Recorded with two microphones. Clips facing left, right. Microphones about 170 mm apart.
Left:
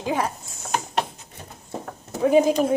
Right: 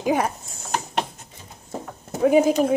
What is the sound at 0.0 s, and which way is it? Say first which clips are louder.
Speech: right 3 dB; 20° right (ahead or behind).